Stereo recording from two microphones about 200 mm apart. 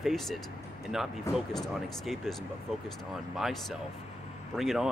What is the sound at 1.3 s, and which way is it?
Speech, 15° left (ahead or behind).